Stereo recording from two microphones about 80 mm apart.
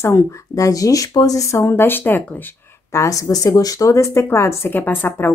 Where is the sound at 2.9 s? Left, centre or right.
Left.